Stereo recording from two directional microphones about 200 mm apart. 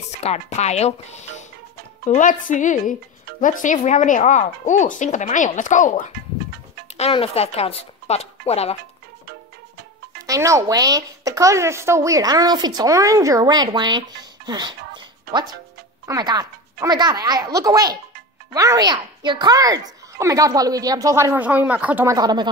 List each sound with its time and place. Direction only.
0.2 s speech: 35° left (ahead or behind)
10.2 s speech: 15° right (ahead or behind)
16.1 s speech: 20° right (ahead or behind)